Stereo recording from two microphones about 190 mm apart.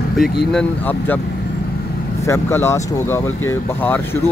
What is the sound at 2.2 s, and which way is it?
Speech, 15° left (ahead or behind).